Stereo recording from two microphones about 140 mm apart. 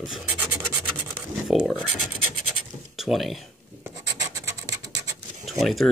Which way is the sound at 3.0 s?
Centre (ahead or behind).